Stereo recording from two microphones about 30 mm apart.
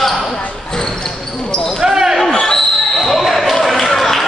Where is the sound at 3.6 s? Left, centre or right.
Centre.